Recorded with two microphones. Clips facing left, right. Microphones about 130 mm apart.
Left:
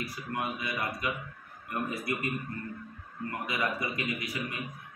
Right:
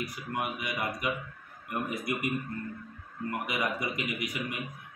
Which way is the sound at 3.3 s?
20° right (ahead or behind).